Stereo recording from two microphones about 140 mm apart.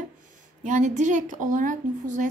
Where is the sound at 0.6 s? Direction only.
60° right (ahead or behind).